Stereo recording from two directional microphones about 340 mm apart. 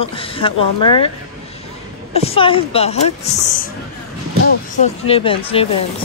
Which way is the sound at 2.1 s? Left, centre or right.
Centre.